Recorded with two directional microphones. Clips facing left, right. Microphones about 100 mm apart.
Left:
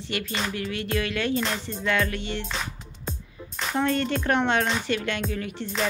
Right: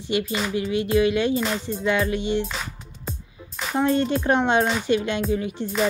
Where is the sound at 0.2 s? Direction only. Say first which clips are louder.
Right 4 dB; 5° right (ahead or behind).